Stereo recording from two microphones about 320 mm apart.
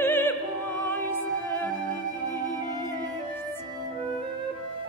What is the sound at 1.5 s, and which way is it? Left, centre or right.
Music, centre.